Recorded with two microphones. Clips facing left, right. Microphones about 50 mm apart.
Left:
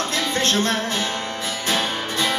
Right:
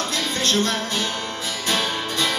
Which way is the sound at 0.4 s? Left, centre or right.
Left.